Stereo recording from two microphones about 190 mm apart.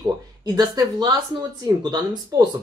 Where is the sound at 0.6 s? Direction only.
20° right (ahead or behind).